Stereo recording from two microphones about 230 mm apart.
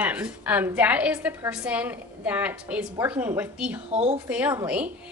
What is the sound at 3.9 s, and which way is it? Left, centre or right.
Speech, right.